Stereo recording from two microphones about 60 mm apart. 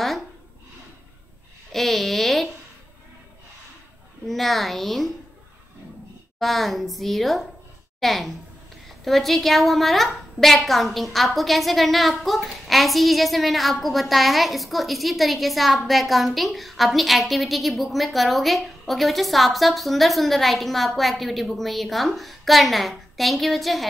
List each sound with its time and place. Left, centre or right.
1.7 s a sound: centre
4.3 s a woman's voice: centre
6.4 s a woman's voice: centre